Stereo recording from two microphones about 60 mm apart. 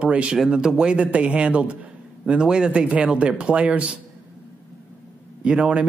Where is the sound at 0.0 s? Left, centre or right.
Right.